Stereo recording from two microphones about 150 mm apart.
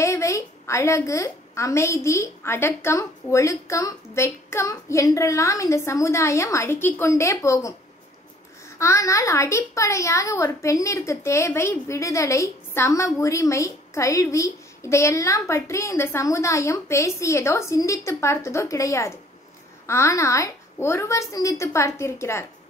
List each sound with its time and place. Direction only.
0.0 s a sound: 20° left (ahead or behind)
2.0 s a woman's voice: 20° left (ahead or behind)
8.7 s a woman's voice: 20° left (ahead or behind)